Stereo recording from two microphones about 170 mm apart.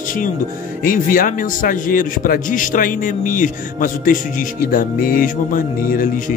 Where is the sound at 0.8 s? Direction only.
55° left (ahead or behind).